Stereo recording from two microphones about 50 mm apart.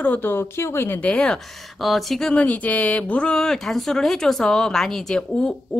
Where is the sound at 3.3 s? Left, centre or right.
Centre.